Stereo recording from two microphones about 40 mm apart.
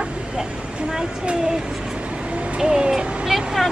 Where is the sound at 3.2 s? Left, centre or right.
Centre.